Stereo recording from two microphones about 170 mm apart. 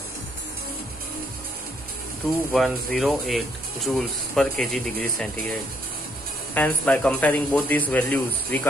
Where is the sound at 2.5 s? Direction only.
Centre (ahead or behind).